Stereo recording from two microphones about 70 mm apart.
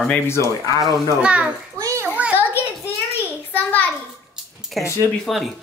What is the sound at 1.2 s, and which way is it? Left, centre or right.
Speech, centre.